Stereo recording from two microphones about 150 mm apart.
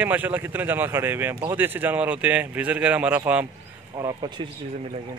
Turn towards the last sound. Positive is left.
turn(degrees=-25)  # may be behind; listen again after turning